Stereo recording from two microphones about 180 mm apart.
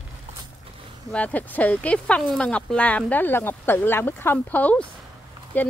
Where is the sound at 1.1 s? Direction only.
10° left (ahead or behind).